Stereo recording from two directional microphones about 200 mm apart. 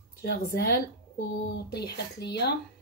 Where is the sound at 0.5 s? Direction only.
50° left (ahead or behind).